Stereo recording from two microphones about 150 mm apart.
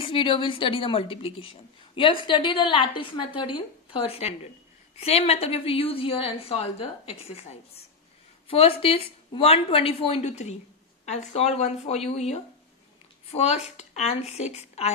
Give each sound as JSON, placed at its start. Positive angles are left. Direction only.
{"t": 0.0, "sound": "a woman's voice", "side_deg": 35}